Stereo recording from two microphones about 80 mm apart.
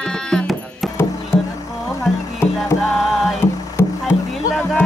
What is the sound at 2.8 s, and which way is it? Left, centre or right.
Music, centre.